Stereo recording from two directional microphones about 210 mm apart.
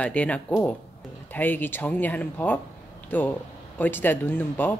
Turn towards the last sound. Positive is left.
turn(degrees=10)  # may be behind; listen again after turning